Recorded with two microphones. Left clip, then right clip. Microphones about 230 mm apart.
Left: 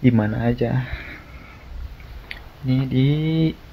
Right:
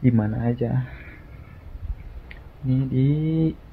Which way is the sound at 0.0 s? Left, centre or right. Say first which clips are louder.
Left 4 dB; centre.